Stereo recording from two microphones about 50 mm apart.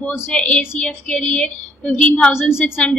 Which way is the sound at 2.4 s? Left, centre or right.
Centre.